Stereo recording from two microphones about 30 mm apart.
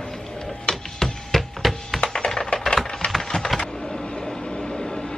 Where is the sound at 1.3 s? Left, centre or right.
Centre.